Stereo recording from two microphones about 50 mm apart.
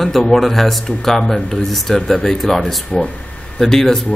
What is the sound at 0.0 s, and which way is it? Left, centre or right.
Speech, centre.